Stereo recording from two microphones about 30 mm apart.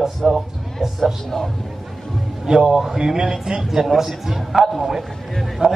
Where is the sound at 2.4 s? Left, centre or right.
Centre.